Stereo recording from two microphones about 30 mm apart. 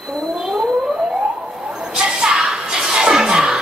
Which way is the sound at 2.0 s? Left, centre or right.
Right.